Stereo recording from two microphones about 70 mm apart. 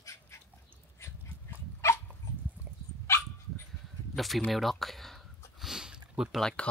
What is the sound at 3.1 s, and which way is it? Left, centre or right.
Dog, left.